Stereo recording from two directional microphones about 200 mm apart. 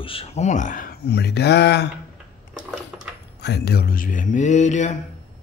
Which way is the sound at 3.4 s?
55° left (ahead or behind).